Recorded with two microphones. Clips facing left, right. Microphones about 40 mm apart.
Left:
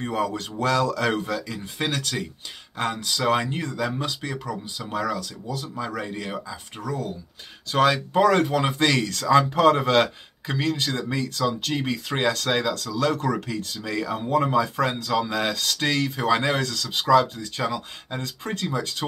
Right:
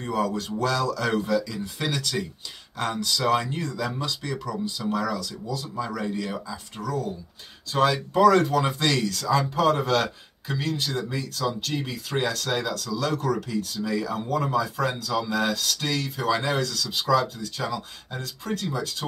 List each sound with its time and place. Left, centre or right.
0.0 s speech: left
7.7 s speech: left
13.8 s speech: left
14.1 s speech: left
14.6 s speech: left